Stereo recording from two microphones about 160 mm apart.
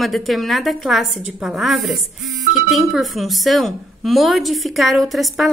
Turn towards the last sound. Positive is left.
turn(degrees=0)  # may be behind; listen again after turning